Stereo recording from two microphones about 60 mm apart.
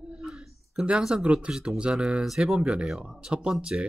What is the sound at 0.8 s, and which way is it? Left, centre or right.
Speech, centre.